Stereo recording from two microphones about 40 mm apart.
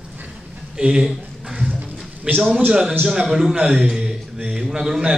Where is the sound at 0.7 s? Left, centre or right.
Right.